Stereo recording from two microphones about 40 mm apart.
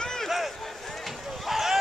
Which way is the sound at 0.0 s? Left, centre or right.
Centre.